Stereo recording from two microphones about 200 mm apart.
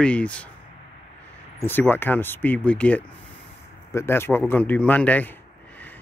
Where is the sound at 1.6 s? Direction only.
10° left (ahead or behind).